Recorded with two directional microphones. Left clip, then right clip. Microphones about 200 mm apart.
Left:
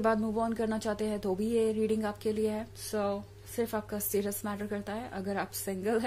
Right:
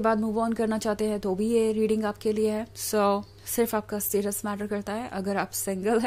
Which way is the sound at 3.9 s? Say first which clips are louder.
Right 5 dB; 25° right (ahead or behind).